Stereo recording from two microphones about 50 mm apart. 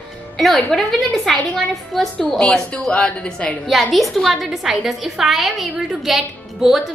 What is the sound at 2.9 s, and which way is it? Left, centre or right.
Speech, left.